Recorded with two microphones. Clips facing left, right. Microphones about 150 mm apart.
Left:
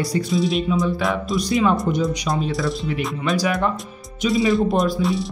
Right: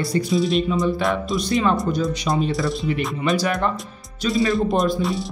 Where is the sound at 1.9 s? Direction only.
20° left (ahead or behind).